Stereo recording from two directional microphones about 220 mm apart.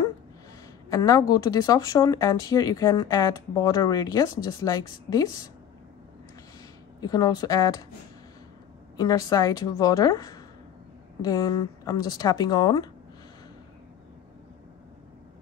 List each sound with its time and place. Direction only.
0.8 s speech: 15° left (ahead or behind)
7.0 s speech: 20° left (ahead or behind)
8.9 s speech: 15° left (ahead or behind)